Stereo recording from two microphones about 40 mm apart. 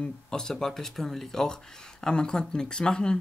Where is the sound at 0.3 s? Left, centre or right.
Centre.